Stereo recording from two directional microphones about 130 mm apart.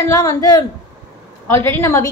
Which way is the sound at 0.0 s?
25° left (ahead or behind).